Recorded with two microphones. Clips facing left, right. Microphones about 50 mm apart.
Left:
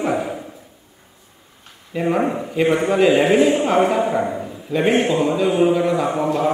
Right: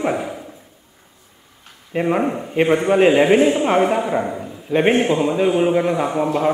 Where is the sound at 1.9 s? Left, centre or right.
Right.